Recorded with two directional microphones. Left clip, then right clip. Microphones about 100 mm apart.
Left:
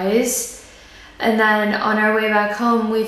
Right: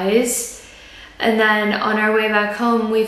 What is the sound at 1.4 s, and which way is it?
A woman's voice, 10° left (ahead or behind).